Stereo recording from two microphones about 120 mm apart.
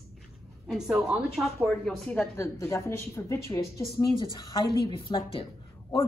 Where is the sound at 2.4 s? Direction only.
25° left (ahead or behind); by 5.4 s 50° left (ahead or behind).